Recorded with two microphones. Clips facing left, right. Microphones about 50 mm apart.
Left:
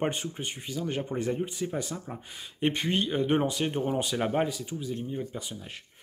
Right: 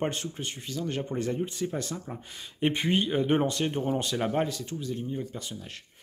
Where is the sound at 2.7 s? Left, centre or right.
Centre.